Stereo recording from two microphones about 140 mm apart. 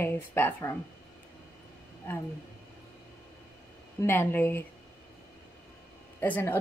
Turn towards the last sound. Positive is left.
turn(degrees=15)  # may be behind; listen again after turning